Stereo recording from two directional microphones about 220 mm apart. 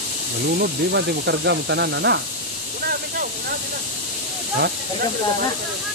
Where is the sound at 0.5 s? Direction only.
45° right (ahead or behind).